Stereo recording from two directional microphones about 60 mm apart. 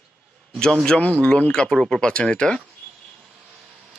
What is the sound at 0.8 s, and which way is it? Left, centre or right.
Speech, centre.